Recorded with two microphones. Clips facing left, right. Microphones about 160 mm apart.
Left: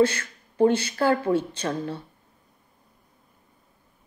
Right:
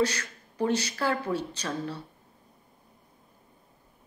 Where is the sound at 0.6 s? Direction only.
30° left (ahead or behind).